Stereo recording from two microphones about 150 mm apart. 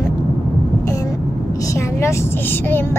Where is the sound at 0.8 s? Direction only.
20° left (ahead or behind).